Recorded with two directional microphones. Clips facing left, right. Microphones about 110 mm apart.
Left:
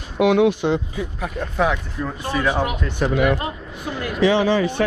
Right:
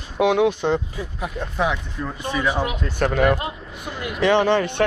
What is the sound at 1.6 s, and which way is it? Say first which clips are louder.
Speech: left 3 dB; centre (ahead or behind).